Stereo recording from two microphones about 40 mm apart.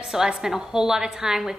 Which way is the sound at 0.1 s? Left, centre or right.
Centre.